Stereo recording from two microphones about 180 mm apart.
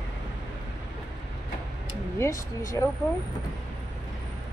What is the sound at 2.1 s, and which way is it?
Speech, 15° left (ahead or behind).